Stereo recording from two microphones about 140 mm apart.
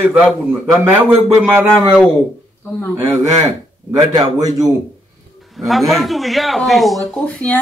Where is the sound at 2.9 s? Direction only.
20° right (ahead or behind).